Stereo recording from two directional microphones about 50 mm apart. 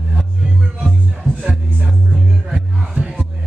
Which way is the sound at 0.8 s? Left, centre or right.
Centre.